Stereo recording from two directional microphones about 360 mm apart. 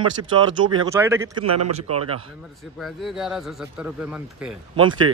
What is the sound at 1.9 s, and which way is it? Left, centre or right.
Speech, right.